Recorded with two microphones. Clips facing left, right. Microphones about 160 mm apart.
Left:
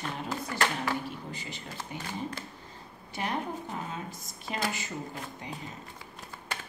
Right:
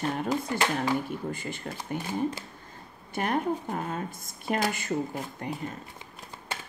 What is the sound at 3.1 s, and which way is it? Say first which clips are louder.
Speech: right 6 dB; 50° right (ahead or behind).